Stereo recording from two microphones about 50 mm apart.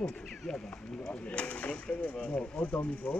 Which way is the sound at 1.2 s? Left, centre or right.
Left.